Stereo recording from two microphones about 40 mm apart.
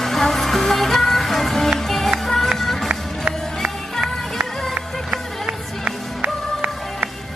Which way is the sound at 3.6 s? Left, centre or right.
Centre.